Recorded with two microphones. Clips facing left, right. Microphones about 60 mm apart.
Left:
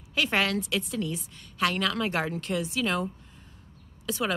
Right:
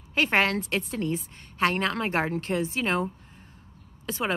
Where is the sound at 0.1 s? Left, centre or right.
Right.